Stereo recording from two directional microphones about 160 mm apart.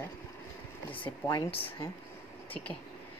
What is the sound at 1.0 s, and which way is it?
Speech, 30° left (ahead or behind).